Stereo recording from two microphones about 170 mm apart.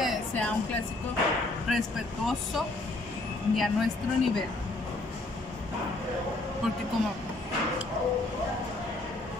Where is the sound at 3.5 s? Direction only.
Centre (ahead or behind).